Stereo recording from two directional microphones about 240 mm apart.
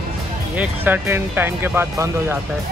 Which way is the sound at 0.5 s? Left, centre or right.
Centre.